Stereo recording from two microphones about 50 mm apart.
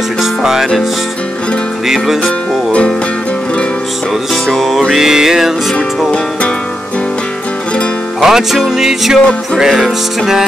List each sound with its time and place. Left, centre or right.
0.2 s music: centre
1.9 s music: centre
4.5 s music: centre
8.2 s music: centre
9.2 s music: centre
9.6 s music: centre